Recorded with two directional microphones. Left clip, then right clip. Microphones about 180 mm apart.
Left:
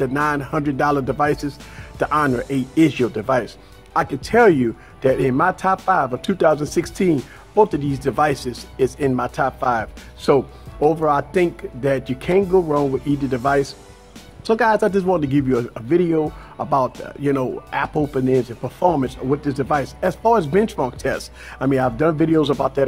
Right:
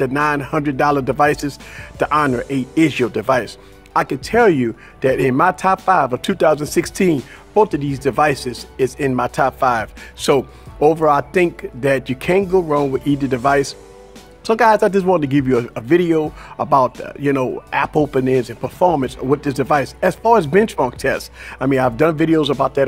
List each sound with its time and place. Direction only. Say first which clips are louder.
0.0 s a man's voice: right 3 dB; 30° right (ahead or behind)
2.0 s a man's voice: right 2 dB; 30° right (ahead or behind)
10.8 s a man's voice: right 4 dB; 35° right (ahead or behind); by 13.0 s 55° right (ahead or behind)
13.0 s a man's voice: right 3 dB; 35° right (ahead or behind)